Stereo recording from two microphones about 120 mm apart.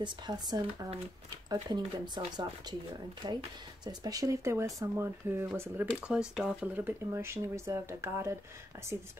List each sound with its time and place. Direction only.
0.0 s speech: 35° right (ahead or behind)
3.8 s speech: 30° right (ahead or behind)
6.0 s speech: 5° right (ahead or behind)
6.7 s speech: 15° right (ahead or behind)